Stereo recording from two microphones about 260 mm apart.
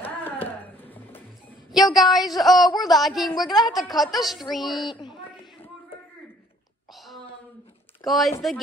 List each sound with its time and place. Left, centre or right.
0.0 s music: centre
1.9 s speech: centre
4.8 s a sound: centre
8.0 s speech: centre